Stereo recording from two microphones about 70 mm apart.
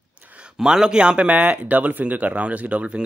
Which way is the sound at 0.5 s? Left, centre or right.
Centre.